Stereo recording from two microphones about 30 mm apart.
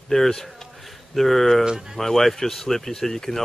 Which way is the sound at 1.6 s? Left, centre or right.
Centre.